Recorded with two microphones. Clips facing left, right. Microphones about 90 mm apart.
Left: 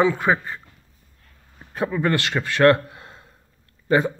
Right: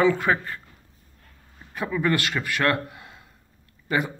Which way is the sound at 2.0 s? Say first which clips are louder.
Even; 25° left (ahead or behind).